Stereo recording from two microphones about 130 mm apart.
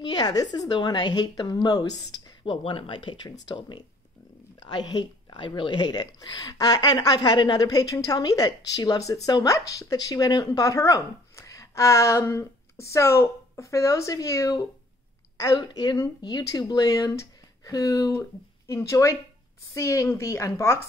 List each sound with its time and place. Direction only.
0.0 s a woman's voice: 30° left (ahead or behind)
2.5 s a woman's voice: 45° left (ahead or behind); by 20.8 s 20° left (ahead or behind)